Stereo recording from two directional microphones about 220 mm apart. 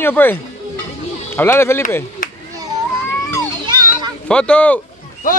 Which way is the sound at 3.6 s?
20° right (ahead or behind).